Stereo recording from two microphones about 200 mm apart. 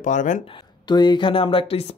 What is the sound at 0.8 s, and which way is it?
Speech, 20° left (ahead or behind).